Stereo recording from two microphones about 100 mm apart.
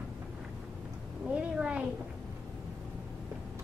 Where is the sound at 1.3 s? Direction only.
10° right (ahead or behind).